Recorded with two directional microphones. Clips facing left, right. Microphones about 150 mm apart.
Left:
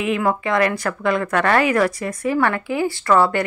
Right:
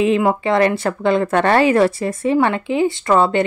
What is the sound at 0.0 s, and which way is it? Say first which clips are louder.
Speech: right 5 dB; 25° right (ahead or behind).